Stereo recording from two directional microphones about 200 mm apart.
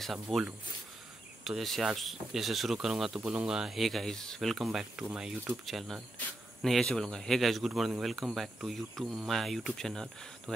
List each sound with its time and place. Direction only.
0.0 s speech: centre (ahead or behind)